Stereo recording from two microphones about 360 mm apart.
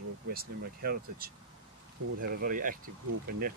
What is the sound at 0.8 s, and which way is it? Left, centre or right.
Speech, right.